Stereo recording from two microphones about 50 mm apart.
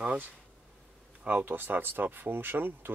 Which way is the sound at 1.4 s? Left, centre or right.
Right.